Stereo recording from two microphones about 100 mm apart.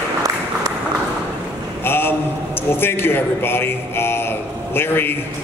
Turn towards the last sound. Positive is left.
turn(degrees=20)  # may be behind; listen again after turning